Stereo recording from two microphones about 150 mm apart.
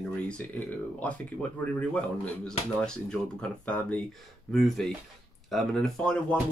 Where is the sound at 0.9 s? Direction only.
10° left (ahead or behind).